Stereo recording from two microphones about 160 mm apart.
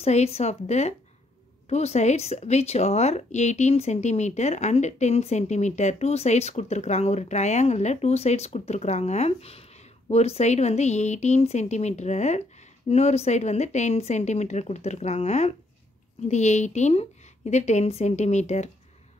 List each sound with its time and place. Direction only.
0.0 s speech: 40° left (ahead or behind)